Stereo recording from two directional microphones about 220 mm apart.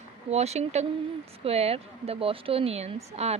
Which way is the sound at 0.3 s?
30° right (ahead or behind).